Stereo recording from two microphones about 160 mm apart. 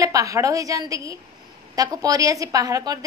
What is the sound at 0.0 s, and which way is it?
A woman's voice, 20° right (ahead or behind).